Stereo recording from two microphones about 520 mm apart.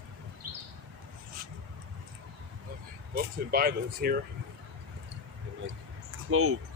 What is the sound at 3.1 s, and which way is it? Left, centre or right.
Speech, centre.